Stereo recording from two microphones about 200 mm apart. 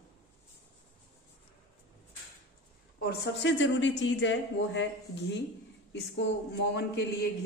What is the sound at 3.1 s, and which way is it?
Speech, 65° left (ahead or behind).